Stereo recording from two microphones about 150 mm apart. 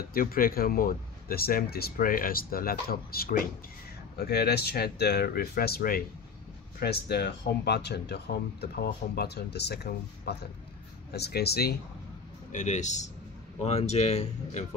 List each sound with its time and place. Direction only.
0.1 s speech: 75° left (ahead or behind)
4.2 s speech: 90° left
6.8 s speech: 90° left
12.5 s speech: 50° left (ahead or behind)